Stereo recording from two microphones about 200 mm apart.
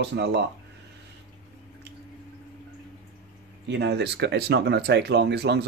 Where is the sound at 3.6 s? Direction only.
60° right (ahead or behind).